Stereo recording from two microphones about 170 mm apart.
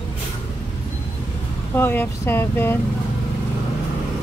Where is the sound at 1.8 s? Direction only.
15° left (ahead or behind).